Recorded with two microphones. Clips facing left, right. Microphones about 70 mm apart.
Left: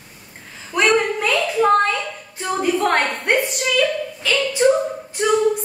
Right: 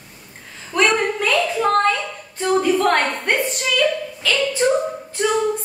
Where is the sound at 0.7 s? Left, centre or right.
Centre.